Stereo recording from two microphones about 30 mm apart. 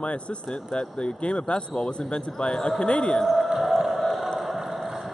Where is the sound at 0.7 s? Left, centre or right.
Left.